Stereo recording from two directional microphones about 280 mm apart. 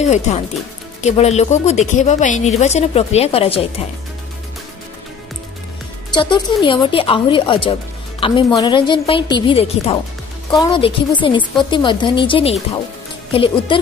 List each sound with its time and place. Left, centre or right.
0.0 s speech: left
6.1 s speech: centre